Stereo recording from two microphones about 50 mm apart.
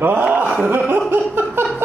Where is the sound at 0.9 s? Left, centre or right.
Right.